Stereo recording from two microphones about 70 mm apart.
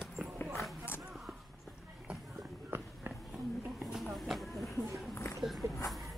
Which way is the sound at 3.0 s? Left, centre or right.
Right.